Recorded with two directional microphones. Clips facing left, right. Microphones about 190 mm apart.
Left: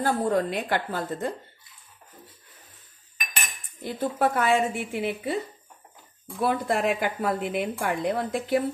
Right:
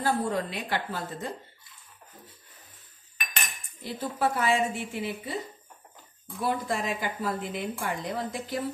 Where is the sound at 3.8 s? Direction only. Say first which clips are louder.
Left 4 dB; 50° left (ahead or behind).